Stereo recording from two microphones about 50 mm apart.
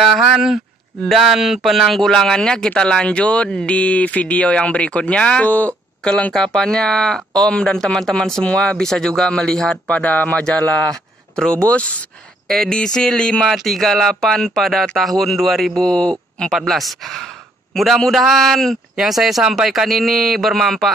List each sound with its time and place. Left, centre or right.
0.0 s a sound: centre
1.1 s speech: centre
3.7 s speech: left
6.3 s speech: centre
9.8 s speech: left
10.7 s speech: centre
12.4 s speech: centre
13.6 s a man's voice: centre
16.5 s a man's voice: centre